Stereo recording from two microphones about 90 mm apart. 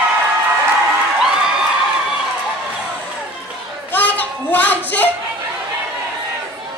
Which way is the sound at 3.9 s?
20° left (ahead or behind).